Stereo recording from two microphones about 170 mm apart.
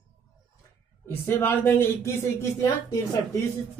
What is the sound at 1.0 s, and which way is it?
Speech, 15° left (ahead or behind).